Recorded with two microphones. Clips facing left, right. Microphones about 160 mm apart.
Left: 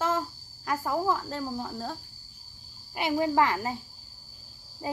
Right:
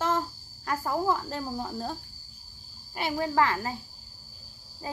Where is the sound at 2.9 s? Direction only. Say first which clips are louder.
Left 2 dB; 15° left (ahead or behind).